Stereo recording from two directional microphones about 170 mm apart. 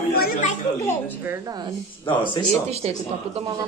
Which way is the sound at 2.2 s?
30° left (ahead or behind).